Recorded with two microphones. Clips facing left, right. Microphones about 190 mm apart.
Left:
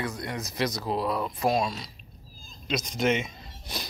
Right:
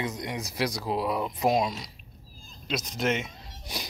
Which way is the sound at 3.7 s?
15° right (ahead or behind).